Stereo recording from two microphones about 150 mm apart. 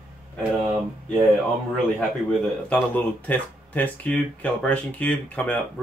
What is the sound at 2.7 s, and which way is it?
Speech, 10° left (ahead or behind).